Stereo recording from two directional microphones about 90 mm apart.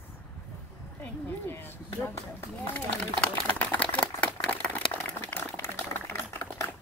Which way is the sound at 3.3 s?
15° left (ahead or behind).